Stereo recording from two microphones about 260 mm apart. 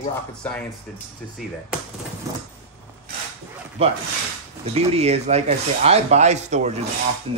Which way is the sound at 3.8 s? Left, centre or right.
Right.